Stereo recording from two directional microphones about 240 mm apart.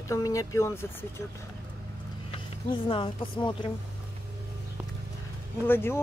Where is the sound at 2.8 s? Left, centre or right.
Left.